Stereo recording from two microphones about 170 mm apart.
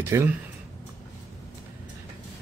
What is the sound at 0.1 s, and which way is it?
Speech, 15° right (ahead or behind).